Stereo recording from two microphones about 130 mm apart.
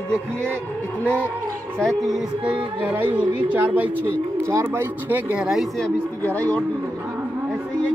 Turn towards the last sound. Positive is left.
turn(degrees=10)  # may be behind; listen again after turning